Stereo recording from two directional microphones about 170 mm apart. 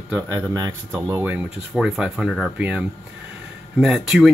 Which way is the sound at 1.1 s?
10° right (ahead or behind).